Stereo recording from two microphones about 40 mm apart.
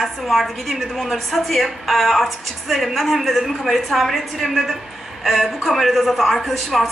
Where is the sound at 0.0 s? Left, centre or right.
Centre.